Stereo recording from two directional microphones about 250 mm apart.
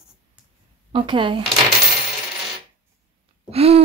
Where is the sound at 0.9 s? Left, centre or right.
Centre.